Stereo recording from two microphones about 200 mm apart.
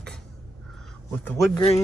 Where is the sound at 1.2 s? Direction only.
10° left (ahead or behind).